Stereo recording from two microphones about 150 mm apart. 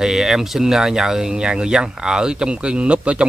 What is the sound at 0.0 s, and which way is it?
Speech, 5° right (ahead or behind).